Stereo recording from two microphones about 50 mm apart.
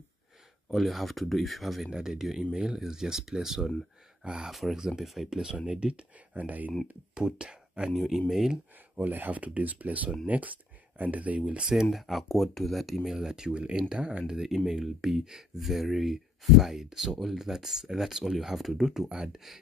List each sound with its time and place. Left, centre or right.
0.7 s speech: centre
1.9 s speech: centre
5.7 s speech: centre
6.3 s speech: right
7.2 s speech: centre
7.9 s speech: centre
8.9 s speech: right
11.6 s speech: centre